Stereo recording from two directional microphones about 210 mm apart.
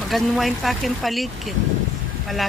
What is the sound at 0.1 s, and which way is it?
Speech, centre (ahead or behind).